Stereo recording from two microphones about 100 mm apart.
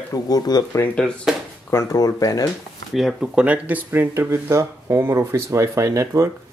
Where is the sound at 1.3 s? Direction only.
5° right (ahead or behind).